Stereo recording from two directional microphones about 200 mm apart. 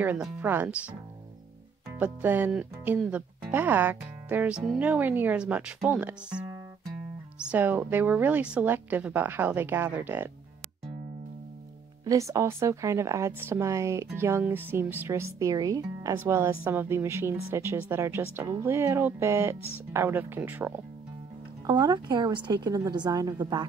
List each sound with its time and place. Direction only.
0.0 s speech: 10° right (ahead or behind)
2.0 s speech: 5° right (ahead or behind)
7.4 s speech: 10° right (ahead or behind)
12.0 s speech: 15° right (ahead or behind)
21.6 s a woman's voice: 20° right (ahead or behind)